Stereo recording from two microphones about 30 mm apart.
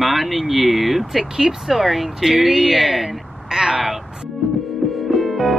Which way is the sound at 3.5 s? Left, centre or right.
Right.